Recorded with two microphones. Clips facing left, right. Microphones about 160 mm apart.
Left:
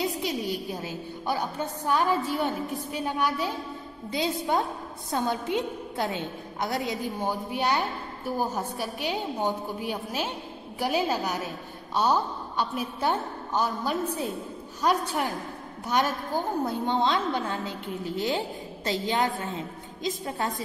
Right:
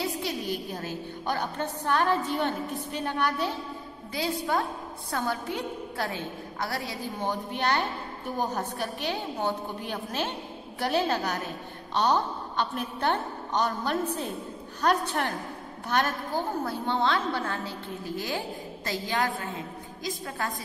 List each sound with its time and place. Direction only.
0.2 s a woman's voice: 10° left (ahead or behind)
4.1 s a woman's voice: 20° left (ahead or behind)